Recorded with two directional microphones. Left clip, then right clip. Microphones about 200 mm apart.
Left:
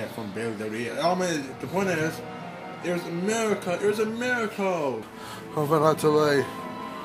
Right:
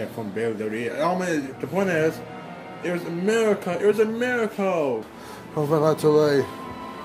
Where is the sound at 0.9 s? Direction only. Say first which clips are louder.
Even; 25° left (ahead or behind).